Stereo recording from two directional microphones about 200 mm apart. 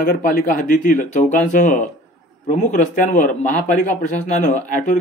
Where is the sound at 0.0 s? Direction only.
45° left (ahead or behind).